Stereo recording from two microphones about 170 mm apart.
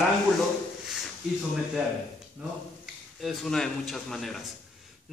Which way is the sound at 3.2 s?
Centre (ahead or behind).